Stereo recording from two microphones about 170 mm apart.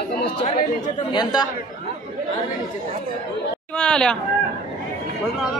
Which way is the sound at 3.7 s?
5° left (ahead or behind).